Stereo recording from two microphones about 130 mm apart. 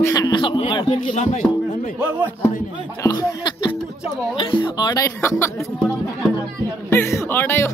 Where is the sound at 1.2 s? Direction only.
60° left (ahead or behind).